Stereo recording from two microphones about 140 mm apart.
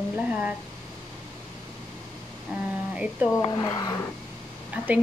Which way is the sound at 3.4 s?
25° left (ahead or behind).